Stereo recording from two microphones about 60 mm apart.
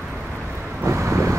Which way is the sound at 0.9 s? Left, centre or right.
Right.